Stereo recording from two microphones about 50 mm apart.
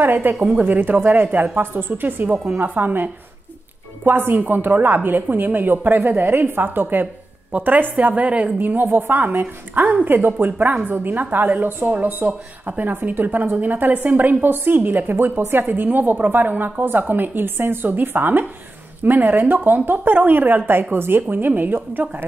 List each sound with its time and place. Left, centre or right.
0.0 s speech: right